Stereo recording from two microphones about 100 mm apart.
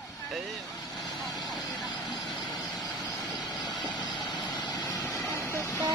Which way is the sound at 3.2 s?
40° left (ahead or behind).